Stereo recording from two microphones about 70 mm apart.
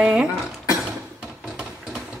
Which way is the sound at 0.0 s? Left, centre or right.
Centre.